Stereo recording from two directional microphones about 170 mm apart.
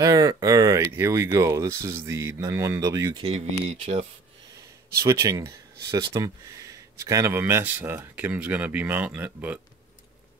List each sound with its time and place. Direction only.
0.0 s speech: 20° right (ahead or behind); by 4.0 s 35° right (ahead or behind)
5.0 s speech: 20° right (ahead or behind)